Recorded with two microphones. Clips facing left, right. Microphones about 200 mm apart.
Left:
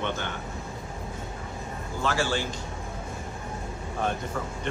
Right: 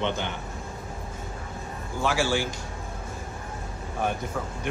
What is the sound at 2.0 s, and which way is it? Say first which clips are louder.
Speech: right 2 dB; 10° right (ahead or behind).